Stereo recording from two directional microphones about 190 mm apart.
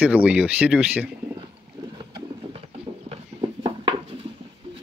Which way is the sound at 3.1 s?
30° right (ahead or behind).